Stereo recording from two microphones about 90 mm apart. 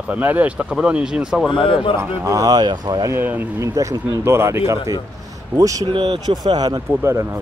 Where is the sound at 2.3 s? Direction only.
45° right (ahead or behind).